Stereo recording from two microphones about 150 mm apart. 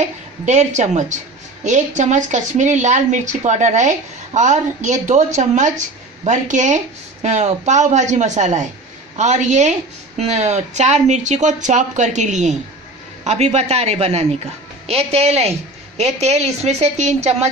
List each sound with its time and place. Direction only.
0.0 s a woman's voice: 50° right (ahead or behind)